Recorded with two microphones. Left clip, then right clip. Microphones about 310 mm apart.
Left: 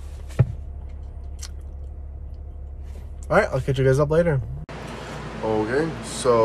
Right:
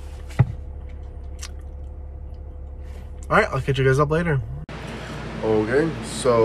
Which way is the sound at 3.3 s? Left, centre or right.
Centre.